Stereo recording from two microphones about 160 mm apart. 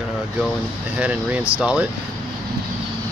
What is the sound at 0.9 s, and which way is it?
Speech, 10° right (ahead or behind).